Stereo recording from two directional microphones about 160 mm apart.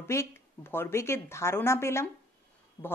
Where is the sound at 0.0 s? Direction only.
15° left (ahead or behind).